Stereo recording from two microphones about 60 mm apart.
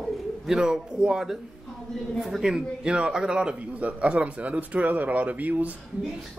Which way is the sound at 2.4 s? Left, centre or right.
Centre.